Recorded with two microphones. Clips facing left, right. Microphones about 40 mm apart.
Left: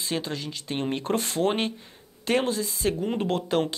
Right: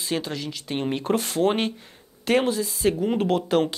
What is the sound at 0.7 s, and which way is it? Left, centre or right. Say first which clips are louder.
Speech: right 3 dB; centre.